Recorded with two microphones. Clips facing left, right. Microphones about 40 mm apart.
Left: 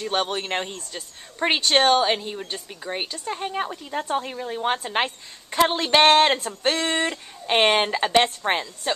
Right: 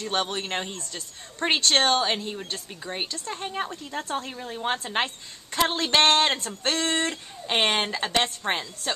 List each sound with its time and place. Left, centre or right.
0.0 s speech: centre